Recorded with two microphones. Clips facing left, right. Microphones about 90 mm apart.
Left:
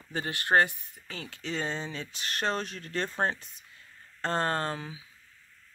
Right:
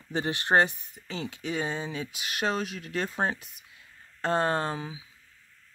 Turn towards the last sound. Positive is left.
turn(degrees=-10)  # may be behind; listen again after turning